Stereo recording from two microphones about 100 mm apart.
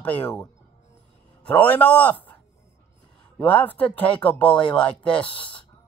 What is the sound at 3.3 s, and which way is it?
A man's voice, 15° left (ahead or behind).